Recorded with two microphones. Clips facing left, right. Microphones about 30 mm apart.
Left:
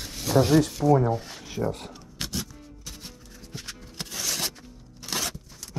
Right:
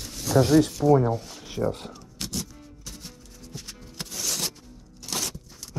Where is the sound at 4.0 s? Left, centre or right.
Centre.